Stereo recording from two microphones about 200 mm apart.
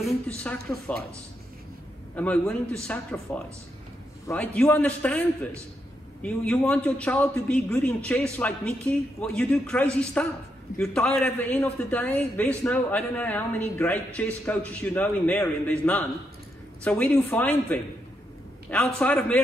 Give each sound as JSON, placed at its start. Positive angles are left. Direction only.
{"t": 0.0, "sound": "a man's voice", "side_deg": 5}
{"t": 2.1, "sound": "a man's voice", "side_deg": 5}
{"t": 6.2, "sound": "a man's voice", "side_deg": 5}